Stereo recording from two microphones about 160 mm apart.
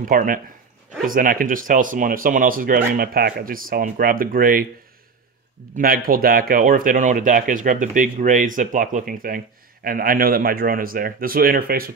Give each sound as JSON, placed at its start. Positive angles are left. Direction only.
{"t": 0.0, "sound": "speech", "side_deg": -60}
{"t": 5.8, "sound": "speech", "side_deg": -65}